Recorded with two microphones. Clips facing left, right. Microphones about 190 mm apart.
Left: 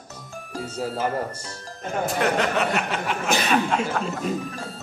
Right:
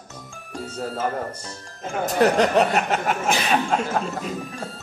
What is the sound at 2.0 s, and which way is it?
Speech, 35° right (ahead or behind).